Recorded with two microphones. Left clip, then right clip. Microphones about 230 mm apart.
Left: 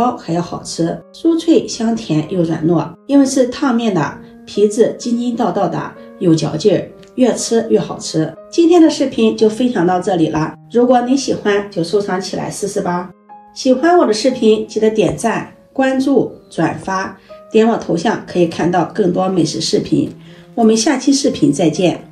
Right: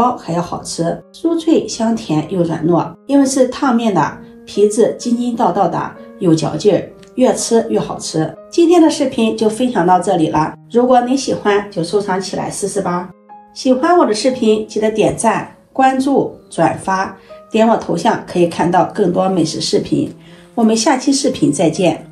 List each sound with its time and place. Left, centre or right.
0.0 s speech: right
13.7 s speech: centre